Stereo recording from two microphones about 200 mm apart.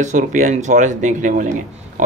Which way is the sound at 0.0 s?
40° right (ahead or behind).